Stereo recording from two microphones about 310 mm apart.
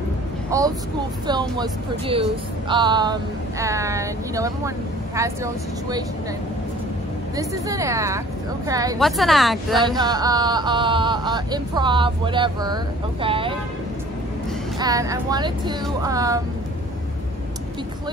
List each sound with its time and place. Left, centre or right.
0.5 s speech: centre
7.3 s speech: centre
9.0 s speech: centre
9.9 s speech: centre
14.8 s speech: centre